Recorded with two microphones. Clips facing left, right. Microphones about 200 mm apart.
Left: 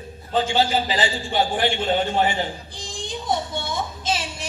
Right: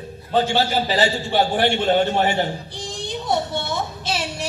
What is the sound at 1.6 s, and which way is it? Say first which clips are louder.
Speech: right 4 dB; 40° right (ahead or behind).